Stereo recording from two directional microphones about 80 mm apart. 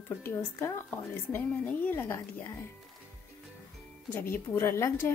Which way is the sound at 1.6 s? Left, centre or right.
Centre.